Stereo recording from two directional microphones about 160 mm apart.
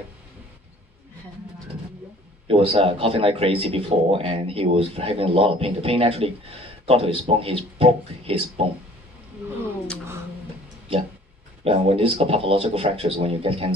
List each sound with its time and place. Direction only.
2.4 s speech: 35° right (ahead or behind)
11.6 s speech: 35° right (ahead or behind)